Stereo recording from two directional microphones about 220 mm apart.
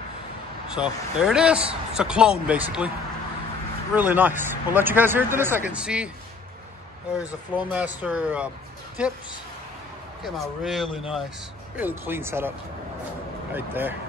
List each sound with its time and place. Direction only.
0.7 s a man's voice: 5° right (ahead or behind)
3.9 s speech: 10° right (ahead or behind)
7.7 s a man's voice: 5° right (ahead or behind)
10.2 s a man's voice: centre (ahead or behind)
13.6 s speech: 10° right (ahead or behind)